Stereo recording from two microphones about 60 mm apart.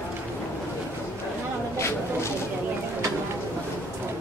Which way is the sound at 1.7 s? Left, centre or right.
Left.